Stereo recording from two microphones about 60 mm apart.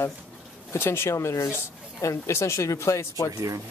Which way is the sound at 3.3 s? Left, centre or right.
Right.